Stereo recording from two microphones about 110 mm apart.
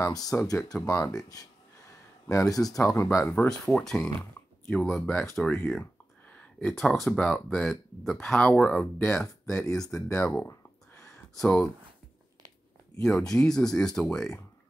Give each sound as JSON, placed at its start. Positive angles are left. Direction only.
{"t": 0.0, "sound": "speech", "side_deg": 35}
{"t": 3.3, "sound": "speech", "side_deg": 5}
{"t": 6.6, "sound": "speech", "side_deg": 5}
{"t": 10.5, "sound": "a sound", "side_deg": 25}
{"t": 11.3, "sound": "speech", "side_deg": 10}
{"t": 13.0, "sound": "speech", "side_deg": 5}